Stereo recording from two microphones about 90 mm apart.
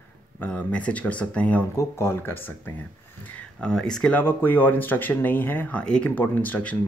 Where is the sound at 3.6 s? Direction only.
10° left (ahead or behind).